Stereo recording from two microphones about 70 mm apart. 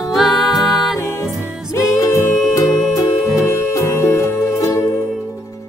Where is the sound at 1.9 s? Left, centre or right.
Left.